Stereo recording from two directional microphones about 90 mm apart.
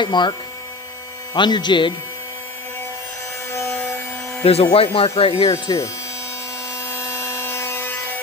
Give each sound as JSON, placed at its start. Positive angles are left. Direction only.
{"t": 0.0, "sound": "speech", "side_deg": 55}
{"t": 3.5, "sound": "wood", "side_deg": 30}
{"t": 4.4, "sound": "speech", "side_deg": 90}
{"t": 5.5, "sound": "speech", "side_deg": 35}
{"t": 6.7, "sound": "wood", "side_deg": 30}